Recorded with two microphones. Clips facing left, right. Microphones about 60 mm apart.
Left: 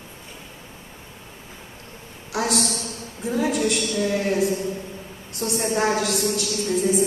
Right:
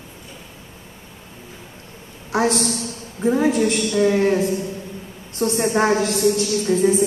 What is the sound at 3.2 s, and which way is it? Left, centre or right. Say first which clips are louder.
A woman's voice: right 5 dB; right.